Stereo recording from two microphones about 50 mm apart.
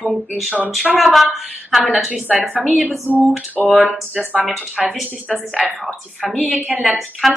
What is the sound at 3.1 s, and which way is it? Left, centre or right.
Speech, right.